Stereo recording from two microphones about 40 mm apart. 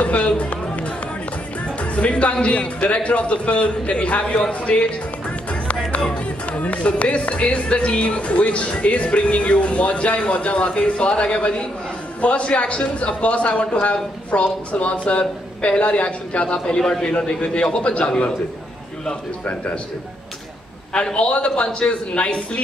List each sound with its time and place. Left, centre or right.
0.0 s run: left
1.8 s speech: left
5.9 s music: left
6.1 s speech: left
16.5 s speech: centre
19.4 s speech: left
20.9 s speech: left